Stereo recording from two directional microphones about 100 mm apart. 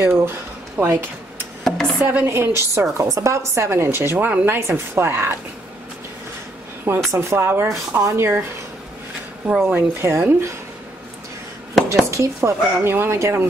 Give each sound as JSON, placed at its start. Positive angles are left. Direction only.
{"t": 0.0, "sound": "speech", "side_deg": -25}
{"t": 1.6, "sound": "a sound", "side_deg": 5}
{"t": 2.0, "sound": "speech", "side_deg": -25}
{"t": 4.6, "sound": "speech", "side_deg": -25}
{"t": 7.1, "sound": "speech", "side_deg": -25}
{"t": 9.6, "sound": "speech", "side_deg": -20}
{"t": 12.1, "sound": "speech", "side_deg": -30}